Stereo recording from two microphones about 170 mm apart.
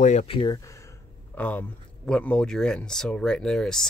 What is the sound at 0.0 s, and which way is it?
Speech, 45° left (ahead or behind).